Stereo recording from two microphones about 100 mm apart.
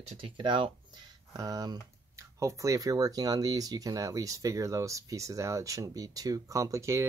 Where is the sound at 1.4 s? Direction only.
40° right (ahead or behind).